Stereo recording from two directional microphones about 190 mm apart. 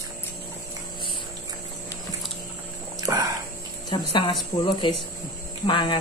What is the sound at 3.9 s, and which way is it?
Speech, 25° left (ahead or behind).